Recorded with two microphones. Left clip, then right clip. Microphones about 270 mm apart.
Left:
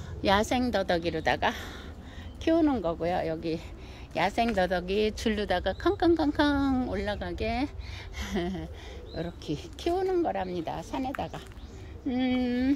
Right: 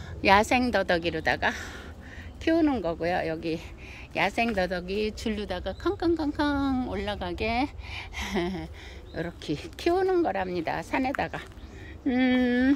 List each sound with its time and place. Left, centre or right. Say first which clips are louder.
0.2 s speech: right 5 dB; centre